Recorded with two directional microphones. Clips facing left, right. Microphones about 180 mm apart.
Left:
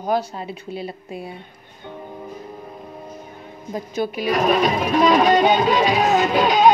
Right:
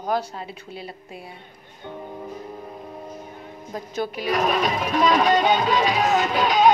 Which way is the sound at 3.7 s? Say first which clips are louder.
Left 4 dB; 10° left (ahead or behind).